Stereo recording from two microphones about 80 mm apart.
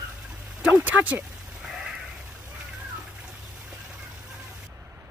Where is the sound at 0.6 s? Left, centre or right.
Centre.